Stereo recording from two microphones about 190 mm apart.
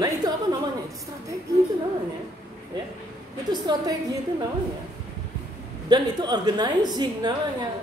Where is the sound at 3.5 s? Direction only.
20° right (ahead or behind).